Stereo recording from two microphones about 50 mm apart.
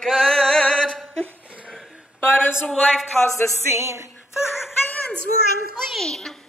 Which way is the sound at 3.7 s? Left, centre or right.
Right.